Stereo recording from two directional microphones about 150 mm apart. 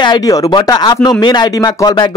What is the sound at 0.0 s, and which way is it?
Speech, 30° left (ahead or behind).